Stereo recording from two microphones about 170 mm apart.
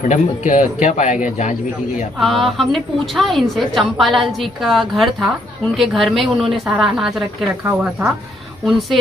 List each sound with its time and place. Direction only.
0.5 s speech: 50° left (ahead or behind)
2.1 s a woman's voice: centre (ahead or behind)
7.6 s speech: 15° right (ahead or behind)
8.6 s a woman's voice: centre (ahead or behind)